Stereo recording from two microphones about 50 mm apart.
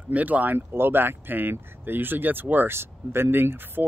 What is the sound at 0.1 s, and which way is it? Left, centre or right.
Speech, right.